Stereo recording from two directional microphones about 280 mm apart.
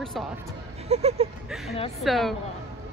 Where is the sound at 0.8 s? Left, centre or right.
Right.